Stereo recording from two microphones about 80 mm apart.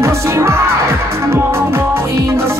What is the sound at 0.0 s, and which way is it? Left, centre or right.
Music, right.